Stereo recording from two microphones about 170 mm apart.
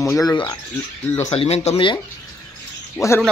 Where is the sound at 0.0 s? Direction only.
5° left (ahead or behind).